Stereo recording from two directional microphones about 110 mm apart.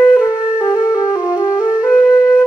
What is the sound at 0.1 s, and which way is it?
Music, 35° left (ahead or behind).